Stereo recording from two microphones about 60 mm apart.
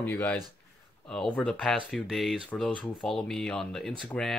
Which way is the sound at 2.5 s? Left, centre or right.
Centre.